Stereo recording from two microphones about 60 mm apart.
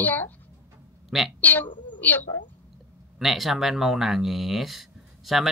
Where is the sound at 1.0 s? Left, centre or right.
Centre.